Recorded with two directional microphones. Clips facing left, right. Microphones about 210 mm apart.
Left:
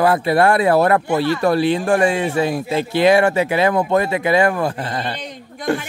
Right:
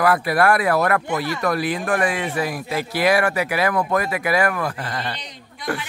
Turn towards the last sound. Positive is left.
turn(degrees=25)  # may be behind; listen again after turning